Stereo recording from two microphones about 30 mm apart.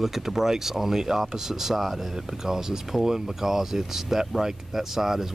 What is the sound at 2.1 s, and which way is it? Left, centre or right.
Speech, centre.